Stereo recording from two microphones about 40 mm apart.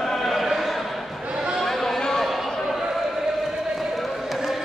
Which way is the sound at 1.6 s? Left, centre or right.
Centre.